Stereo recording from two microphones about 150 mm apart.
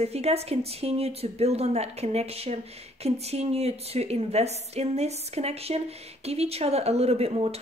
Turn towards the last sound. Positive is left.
turn(degrees=-45)  # may be behind; listen again after turning